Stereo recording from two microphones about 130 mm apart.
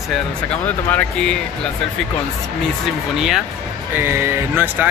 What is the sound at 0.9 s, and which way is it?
Speech, 5° left (ahead or behind).